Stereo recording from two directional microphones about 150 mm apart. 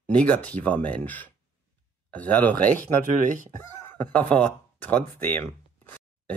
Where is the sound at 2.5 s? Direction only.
60° right (ahead or behind).